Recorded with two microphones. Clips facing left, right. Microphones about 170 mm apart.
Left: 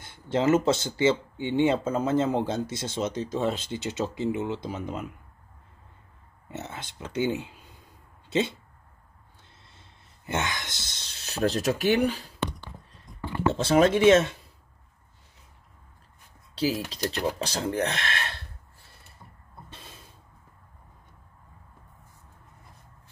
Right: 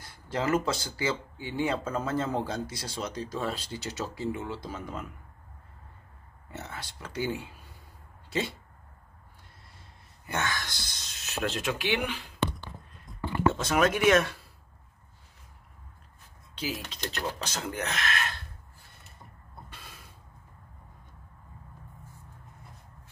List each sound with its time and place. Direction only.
0.0 s speech: 25° left (ahead or behind)
6.5 s speech: 20° left (ahead or behind)
10.2 s speech: 20° left (ahead or behind); by 12.3 s 40° left (ahead or behind)
13.5 s speech: 30° left (ahead or behind)
16.5 s speech: 35° left (ahead or behind)
17.0 s speech: 10° left (ahead or behind)
17.4 s speech: 35° left (ahead or behind)
19.7 s a sound: 25° left (ahead or behind)